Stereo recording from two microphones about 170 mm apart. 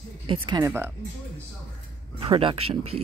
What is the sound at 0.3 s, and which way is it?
Speech, 25° right (ahead or behind).